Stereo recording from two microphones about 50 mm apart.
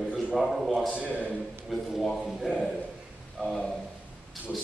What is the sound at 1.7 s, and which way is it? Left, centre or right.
Speech, centre.